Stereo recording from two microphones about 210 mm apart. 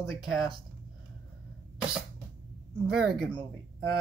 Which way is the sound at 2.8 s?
Centre (ahead or behind).